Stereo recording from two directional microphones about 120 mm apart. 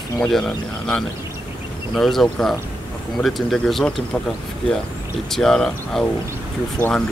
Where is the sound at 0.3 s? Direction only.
5° left (ahead or behind).